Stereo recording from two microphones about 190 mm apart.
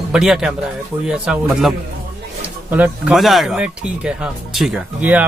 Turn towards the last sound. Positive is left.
turn(degrees=-5)  # may be behind; listen again after turning